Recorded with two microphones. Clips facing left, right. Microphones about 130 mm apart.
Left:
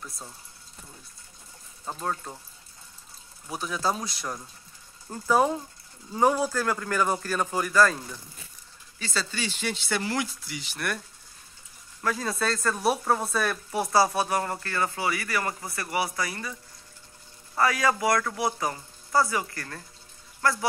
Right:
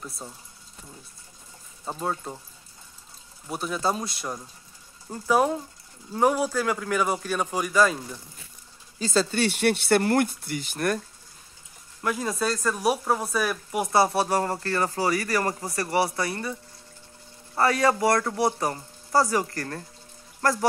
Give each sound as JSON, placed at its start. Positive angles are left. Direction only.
{"t": 1.9, "sound": "speech", "side_deg": -10}
{"t": 3.4, "sound": "a man's voice", "side_deg": -5}
{"t": 5.1, "sound": "a man's voice", "side_deg": -5}
{"t": 7.7, "sound": "speech", "side_deg": -20}
{"t": 9.1, "sound": "speech", "side_deg": -50}
{"t": 12.0, "sound": "speech", "side_deg": -15}
{"t": 13.9, "sound": "speech", "side_deg": -25}
{"t": 17.6, "sound": "speech", "side_deg": -30}